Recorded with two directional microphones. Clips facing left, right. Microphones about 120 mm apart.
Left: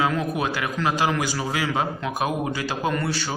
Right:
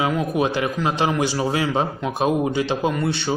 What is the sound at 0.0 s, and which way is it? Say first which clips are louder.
Speech: right 3 dB; 20° right (ahead or behind).